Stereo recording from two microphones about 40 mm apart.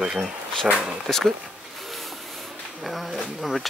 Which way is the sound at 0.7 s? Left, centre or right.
Right.